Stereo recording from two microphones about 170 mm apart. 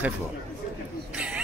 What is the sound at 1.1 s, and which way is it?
Vehicle, 5° right (ahead or behind).